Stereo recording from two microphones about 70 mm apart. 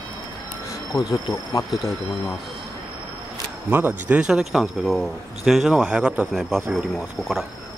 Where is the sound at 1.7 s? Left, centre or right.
Centre.